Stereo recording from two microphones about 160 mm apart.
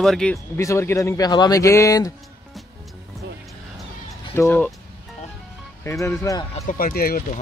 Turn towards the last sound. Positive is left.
turn(degrees=65)  # may be behind; listen again after turning